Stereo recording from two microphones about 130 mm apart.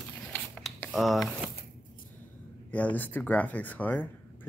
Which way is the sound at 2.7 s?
10° left (ahead or behind).